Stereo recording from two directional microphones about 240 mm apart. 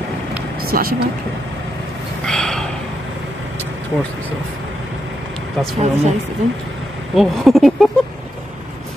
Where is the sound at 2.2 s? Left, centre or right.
Centre.